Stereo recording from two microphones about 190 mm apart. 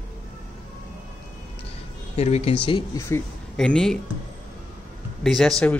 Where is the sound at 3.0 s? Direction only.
15° left (ahead or behind).